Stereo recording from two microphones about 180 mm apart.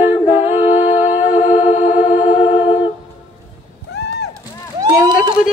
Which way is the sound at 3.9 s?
65° left (ahead or behind).